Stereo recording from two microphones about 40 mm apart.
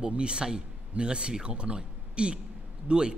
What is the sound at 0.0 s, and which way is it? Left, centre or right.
A man's voice, right.